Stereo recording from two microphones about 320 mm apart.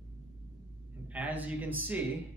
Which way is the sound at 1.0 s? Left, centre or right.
Centre.